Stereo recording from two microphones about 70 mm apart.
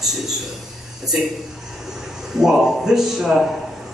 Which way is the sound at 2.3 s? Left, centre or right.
Centre.